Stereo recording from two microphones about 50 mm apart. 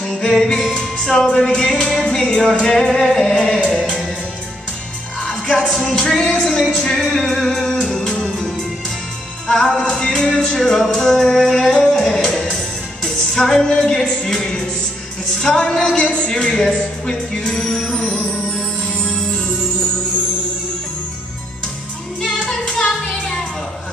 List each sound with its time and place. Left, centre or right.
0.0 s music: centre
5.3 s speech: centre
9.5 s music: centre
12.0 s music: centre
17.9 s music: left
22.2 s music: centre